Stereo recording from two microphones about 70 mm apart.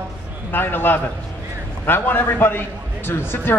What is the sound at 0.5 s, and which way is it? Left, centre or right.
Speech, left.